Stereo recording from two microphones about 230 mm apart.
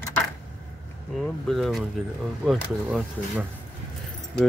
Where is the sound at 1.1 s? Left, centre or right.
Centre.